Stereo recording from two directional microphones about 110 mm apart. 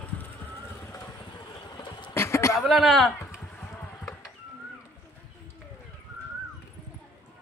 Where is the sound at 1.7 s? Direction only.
45° left (ahead or behind).